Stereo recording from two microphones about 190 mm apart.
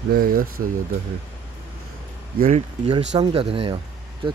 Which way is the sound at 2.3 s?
40° right (ahead or behind).